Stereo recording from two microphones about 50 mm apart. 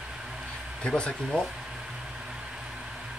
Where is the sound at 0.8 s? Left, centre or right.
Centre.